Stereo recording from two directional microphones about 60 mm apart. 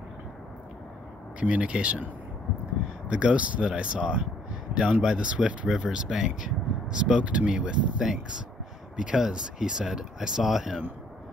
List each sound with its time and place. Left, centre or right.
1.4 s speech: right
3.1 s speech: centre